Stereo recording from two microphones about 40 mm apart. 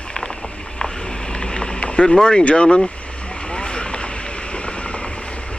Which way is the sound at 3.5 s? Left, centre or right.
Left.